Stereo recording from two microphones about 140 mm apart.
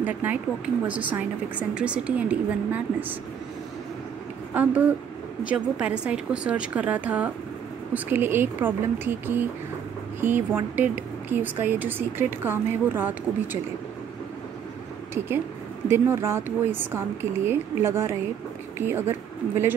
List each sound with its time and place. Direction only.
0.0 s a woman's voice: 15° right (ahead or behind)
4.6 s a woman's voice: 10° right (ahead or behind)
15.9 s a woman's voice: 20° right (ahead or behind)